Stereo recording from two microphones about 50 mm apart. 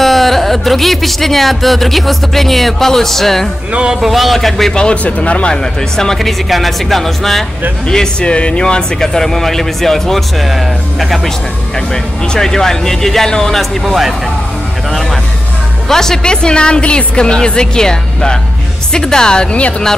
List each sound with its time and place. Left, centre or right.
0.0 s speech: centre
3.7 s speech: centre
4.0 s speech: centre
5.0 s speech: left
5.5 s speech: centre
7.9 s a woman's voice: centre
11.9 s a woman's voice: centre
13.8 s speech: centre
15.9 s a woman's voice: centre